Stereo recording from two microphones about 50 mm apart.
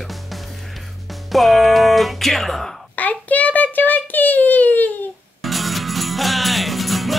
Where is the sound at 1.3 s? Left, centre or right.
Centre.